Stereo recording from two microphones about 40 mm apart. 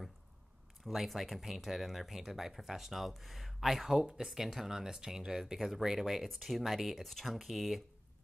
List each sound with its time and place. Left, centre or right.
0.8 s speech: centre
4.0 s speech: centre